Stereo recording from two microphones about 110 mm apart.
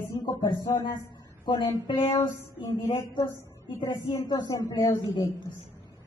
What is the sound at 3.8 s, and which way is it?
Speech, 40° left (ahead or behind).